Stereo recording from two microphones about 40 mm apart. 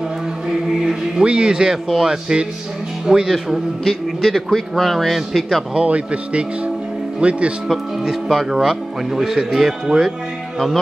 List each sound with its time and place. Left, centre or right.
0.5 s music: centre
1.2 s speech: right; by 5.6 s centre
5.8 s speech: right
7.6 s speech: centre